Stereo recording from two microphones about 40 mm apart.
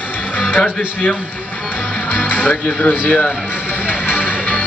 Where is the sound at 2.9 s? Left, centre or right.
Left.